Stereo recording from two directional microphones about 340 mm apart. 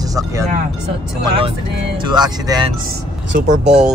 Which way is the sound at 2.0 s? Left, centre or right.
Centre.